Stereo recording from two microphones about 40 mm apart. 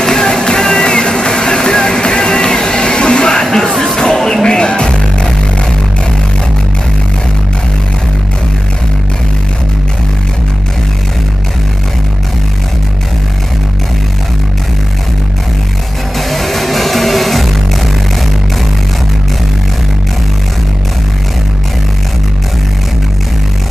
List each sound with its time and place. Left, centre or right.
0.0 s music: centre
16.2 s music: centre